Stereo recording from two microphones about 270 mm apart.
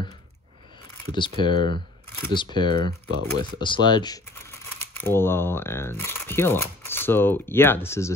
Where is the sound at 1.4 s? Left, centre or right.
Centre.